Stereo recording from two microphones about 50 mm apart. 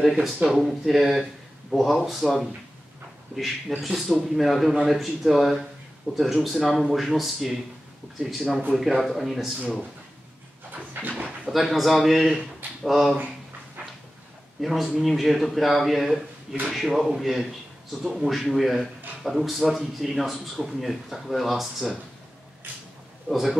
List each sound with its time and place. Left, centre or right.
0.0 s speech: centre
3.3 s speech: centre
10.7 s dog: right
11.5 s speech: centre
14.6 s speech: centre
23.2 s speech: centre